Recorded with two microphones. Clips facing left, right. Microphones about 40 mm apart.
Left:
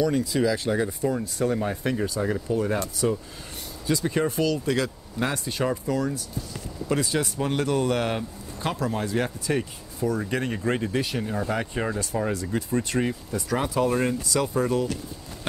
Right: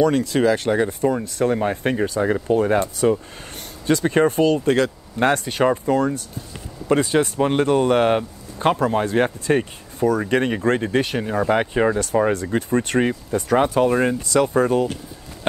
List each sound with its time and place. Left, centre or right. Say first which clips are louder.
0.0 s speech: right 6 dB; right
3.8 s speech: right 7 dB; right
13.8 s speech: right 5 dB; right
14.2 s speech: right 7 dB; right